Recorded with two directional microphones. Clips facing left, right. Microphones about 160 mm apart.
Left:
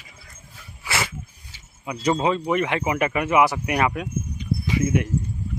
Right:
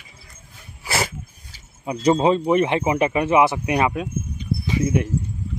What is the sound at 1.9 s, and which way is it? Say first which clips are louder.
Speech: right 4 dB; 30° right (ahead or behind).